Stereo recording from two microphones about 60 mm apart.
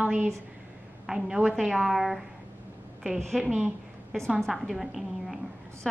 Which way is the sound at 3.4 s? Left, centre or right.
Right.